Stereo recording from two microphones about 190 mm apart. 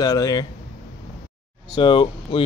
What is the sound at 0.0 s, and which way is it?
Speech, 20° left (ahead or behind).